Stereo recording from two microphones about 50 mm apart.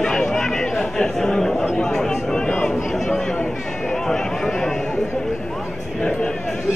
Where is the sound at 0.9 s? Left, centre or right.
Centre.